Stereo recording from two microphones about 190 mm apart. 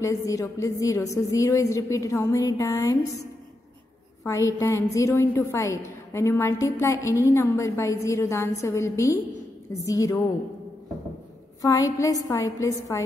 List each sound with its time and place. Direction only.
0.0 s a woman's voice: 15° left (ahead or behind)
4.2 s a woman's voice: 15° left (ahead or behind)
11.6 s a woman's voice: 15° left (ahead or behind)